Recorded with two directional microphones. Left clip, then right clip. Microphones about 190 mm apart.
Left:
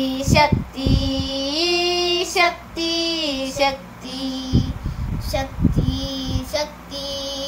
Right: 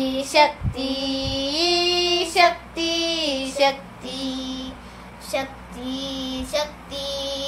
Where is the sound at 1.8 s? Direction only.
15° right (ahead or behind).